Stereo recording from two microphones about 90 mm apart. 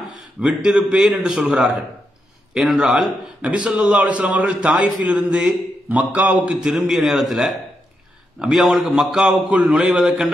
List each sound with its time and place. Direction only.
0.4 s a man's voice: 5° right (ahead or behind)